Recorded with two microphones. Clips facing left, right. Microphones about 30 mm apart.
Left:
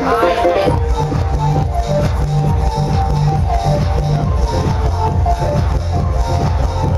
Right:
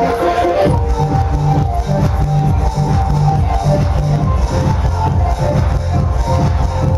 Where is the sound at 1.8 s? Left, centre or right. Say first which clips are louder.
Even; left.